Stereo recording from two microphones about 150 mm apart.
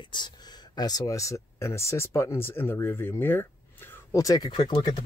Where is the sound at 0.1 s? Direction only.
30° left (ahead or behind).